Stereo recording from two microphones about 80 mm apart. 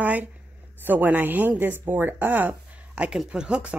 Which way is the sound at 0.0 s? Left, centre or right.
Right.